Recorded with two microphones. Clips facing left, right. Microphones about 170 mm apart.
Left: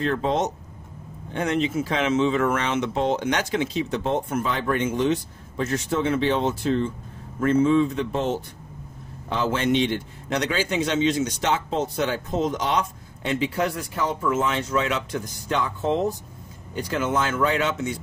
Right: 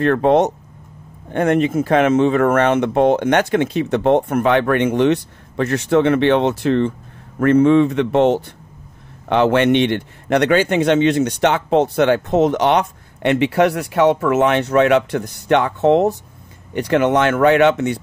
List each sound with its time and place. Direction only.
0.0 s a man's voice: 60° right (ahead or behind)